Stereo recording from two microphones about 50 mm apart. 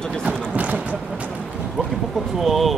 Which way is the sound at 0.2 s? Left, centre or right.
Right.